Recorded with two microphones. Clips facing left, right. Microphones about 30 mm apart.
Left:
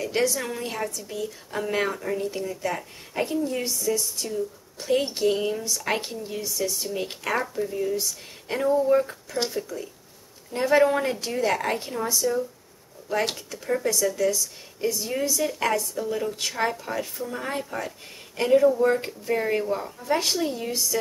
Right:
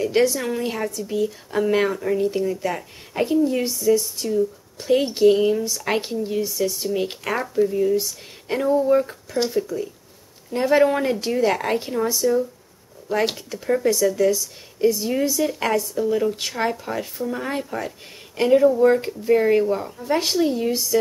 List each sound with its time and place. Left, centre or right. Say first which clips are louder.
0.0 s speech: right 6 dB; centre
7.9 s speech: right 6 dB; centre